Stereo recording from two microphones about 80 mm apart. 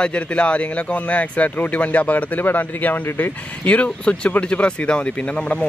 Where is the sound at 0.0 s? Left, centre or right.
Centre.